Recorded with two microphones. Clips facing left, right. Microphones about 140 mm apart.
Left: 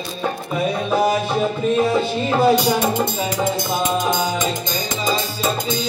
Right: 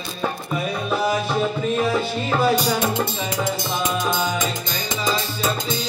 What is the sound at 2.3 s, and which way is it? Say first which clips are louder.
Music: left 4 dB; 25° left (ahead or behind).